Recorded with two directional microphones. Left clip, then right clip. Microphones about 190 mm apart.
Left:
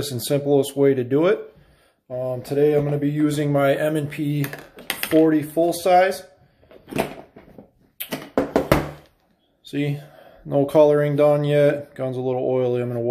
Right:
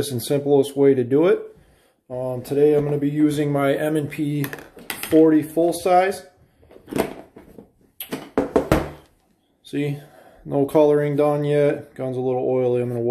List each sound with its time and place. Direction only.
0.0 s speech: centre (ahead or behind)
4.8 s dishes: 25° left (ahead or behind)
5.2 s speech: centre (ahead or behind)
9.7 s speech: centre (ahead or behind)